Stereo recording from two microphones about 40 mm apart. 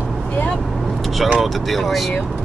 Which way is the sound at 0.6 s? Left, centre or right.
Centre.